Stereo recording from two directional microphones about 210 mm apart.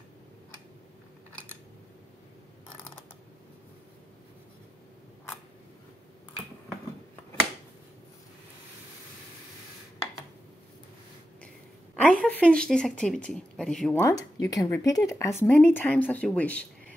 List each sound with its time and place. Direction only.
11.9 s a woman's voice: 5° left (ahead or behind)
14.0 s speech: 15° left (ahead or behind)